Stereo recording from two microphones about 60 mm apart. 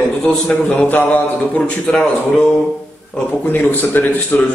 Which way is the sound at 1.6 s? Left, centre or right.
Centre.